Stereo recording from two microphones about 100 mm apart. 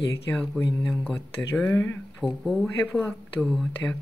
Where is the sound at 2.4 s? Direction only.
Centre (ahead or behind).